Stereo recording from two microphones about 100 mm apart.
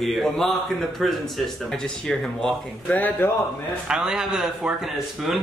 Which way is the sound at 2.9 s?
15° left (ahead or behind).